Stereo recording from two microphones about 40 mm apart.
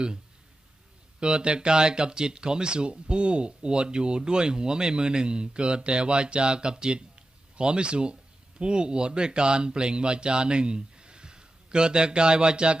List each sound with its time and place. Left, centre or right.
1.2 s speech: right